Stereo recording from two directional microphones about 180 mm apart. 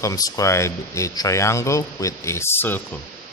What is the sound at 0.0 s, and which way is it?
Speech, 20° left (ahead or behind).